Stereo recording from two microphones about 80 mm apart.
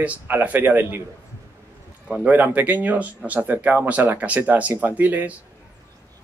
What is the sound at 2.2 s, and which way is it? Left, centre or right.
A man's voice, centre.